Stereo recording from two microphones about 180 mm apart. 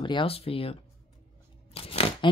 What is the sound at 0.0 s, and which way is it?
Speech, 30° left (ahead or behind).